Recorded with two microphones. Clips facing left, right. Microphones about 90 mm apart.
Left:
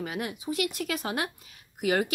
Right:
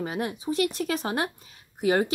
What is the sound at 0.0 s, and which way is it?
A woman's voice, 30° right (ahead or behind).